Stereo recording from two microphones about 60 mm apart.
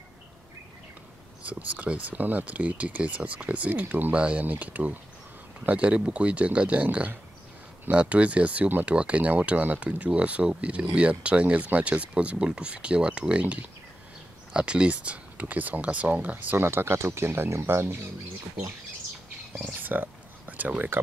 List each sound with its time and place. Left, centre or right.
1.4 s speech: right
16.6 s speech: right
19.5 s speech: right